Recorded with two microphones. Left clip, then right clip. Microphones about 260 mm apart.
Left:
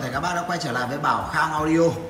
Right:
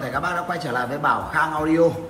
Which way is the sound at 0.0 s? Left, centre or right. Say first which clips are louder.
Right 1 dB; centre.